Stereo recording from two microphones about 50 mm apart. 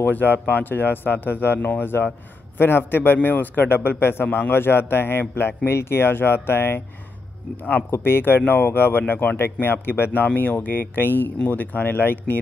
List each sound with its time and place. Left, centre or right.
0.0 s a man's voice: left
3.2 s a man's voice: left
7.9 s a man's voice: left
10.2 s speech: left